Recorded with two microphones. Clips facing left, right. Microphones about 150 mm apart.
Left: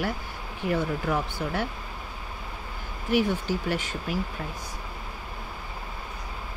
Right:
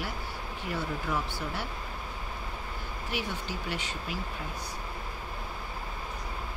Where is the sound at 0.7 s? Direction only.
55° left (ahead or behind).